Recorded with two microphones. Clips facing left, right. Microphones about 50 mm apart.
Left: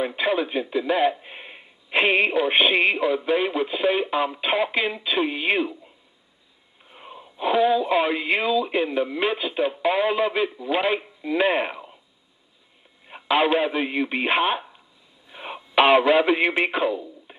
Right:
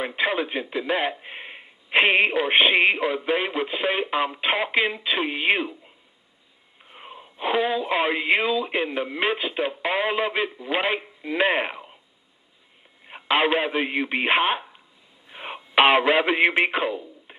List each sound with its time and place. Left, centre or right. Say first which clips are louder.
0.0 s a man's voice: left 1 dB; centre
6.8 s speech: even; centre
13.0 s speech: left 1 dB; centre